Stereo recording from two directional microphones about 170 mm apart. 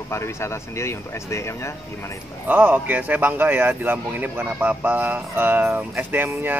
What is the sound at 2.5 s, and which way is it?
Speech, 10° right (ahead or behind).